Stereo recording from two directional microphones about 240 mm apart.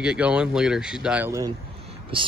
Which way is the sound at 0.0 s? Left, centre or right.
Centre.